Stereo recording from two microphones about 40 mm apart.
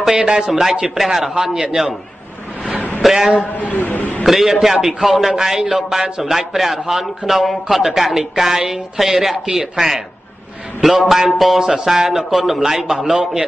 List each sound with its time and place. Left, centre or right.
0.1 s a man's voice: centre
3.0 s a man's voice: centre
3.3 s a man's voice: left
4.3 s a man's voice: centre